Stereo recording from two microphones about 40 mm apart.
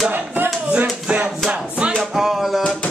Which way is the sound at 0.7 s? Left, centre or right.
Right.